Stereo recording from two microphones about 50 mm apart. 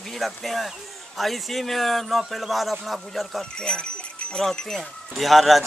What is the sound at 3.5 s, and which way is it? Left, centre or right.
Speech, centre.